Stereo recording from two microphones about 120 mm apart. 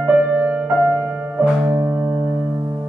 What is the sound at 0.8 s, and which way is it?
Piano, 15° right (ahead or behind).